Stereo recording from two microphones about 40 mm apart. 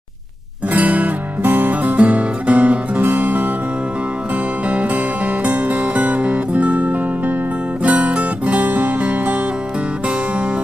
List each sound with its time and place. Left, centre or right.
0.7 s music: right
1.4 s music: right
4.6 s music: right